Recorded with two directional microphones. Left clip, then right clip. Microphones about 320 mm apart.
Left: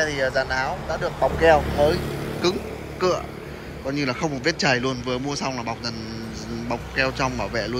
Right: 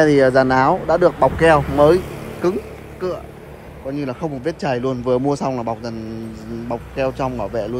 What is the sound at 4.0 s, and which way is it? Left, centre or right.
A man's voice, centre.